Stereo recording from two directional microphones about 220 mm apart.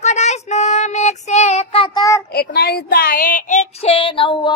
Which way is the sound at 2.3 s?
45° left (ahead or behind).